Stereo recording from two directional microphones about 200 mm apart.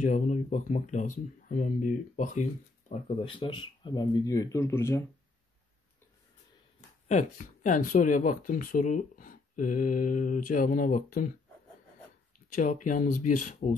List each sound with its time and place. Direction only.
0.0 s speech: 40° left (ahead or behind)
3.2 s speech: 25° left (ahead or behind)
7.1 s speech: 40° left (ahead or behind)
12.4 s speech: 40° left (ahead or behind)